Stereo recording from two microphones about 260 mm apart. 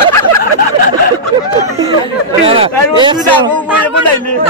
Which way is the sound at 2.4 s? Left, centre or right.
Right.